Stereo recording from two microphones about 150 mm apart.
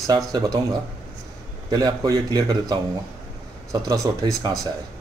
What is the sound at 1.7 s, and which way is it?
Speech, 25° right (ahead or behind).